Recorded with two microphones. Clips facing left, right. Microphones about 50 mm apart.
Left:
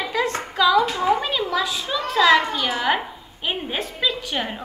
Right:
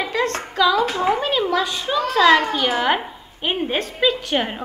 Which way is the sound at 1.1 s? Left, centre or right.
Right.